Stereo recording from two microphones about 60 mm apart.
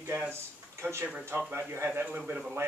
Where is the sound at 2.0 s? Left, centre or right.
Right.